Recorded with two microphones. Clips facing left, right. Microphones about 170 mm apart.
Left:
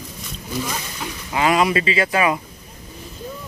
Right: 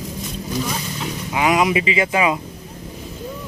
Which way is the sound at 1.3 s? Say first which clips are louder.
Even; 15° right (ahead or behind).